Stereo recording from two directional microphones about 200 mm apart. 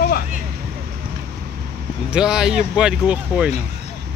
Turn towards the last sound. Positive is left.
turn(degrees=-5)  # may be behind; listen again after turning